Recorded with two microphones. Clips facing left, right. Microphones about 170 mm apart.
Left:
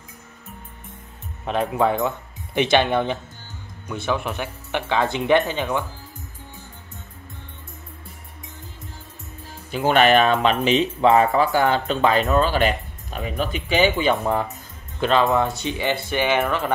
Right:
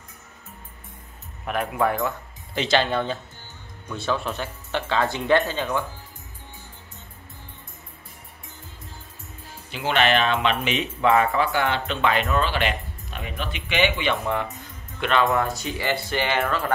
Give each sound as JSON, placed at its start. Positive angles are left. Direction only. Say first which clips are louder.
{"t": 1.4, "sound": "speech", "louder": "left 3 dB", "side_deg": 25}
{"t": 9.7, "sound": "speech", "louder": "left 5 dB", "side_deg": 45}